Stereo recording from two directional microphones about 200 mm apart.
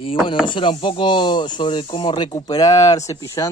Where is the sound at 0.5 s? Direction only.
25° left (ahead or behind).